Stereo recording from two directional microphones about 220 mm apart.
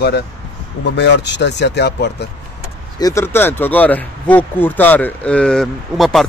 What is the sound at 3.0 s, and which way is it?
Speech, 10° left (ahead or behind).